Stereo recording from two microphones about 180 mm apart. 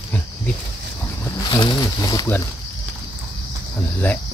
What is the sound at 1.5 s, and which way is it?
Speech, 25° left (ahead or behind).